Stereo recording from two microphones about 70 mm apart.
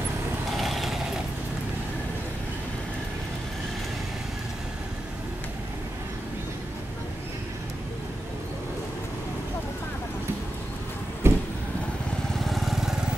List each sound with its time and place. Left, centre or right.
0.5 s vehicle: centre
11.2 s vehicle: right
12.4 s vehicle: centre